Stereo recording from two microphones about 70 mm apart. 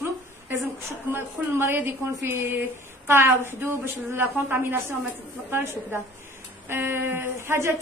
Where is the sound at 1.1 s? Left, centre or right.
Right.